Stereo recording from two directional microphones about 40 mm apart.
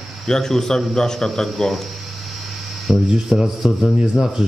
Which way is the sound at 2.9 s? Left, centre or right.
Centre.